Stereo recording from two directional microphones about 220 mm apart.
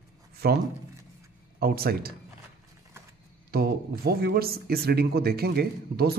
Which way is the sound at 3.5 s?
45° right (ahead or behind).